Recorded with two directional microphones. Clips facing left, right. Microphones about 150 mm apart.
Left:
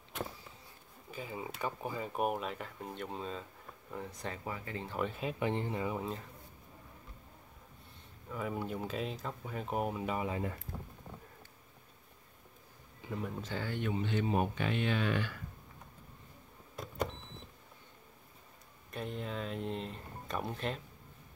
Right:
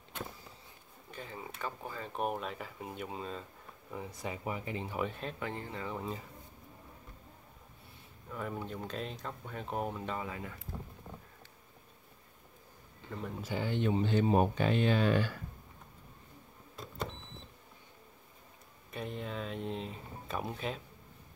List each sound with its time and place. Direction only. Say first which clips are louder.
1.1 s speech: left 3 dB; 10° left (ahead or behind); by 4.9 s 15° right (ahead or behind)
4.9 s speech: left 2 dB; centre (ahead or behind)
5.4 s speech: left 7 dB; 20° left (ahead or behind)
5.9 s speech: left 1 dB; centre (ahead or behind)
8.3 s speech: left 2 dB; 5° left (ahead or behind)
13.0 s speech: left 2 dB; 5° left (ahead or behind)
13.4 s speech: right 4 dB; 15° right (ahead or behind); by 15.3 s 35° right (ahead or behind)
18.9 s speech: even; centre (ahead or behind)